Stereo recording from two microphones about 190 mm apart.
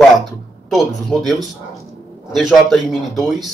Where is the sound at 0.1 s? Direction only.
Centre (ahead or behind).